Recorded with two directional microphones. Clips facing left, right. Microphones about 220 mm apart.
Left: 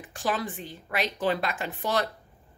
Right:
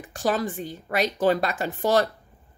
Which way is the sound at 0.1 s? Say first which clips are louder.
Right 5 dB; 40° right (ahead or behind).